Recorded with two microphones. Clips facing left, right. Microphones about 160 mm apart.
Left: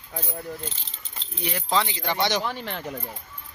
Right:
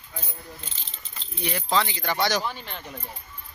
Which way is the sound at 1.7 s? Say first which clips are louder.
Even; 20° left (ahead or behind).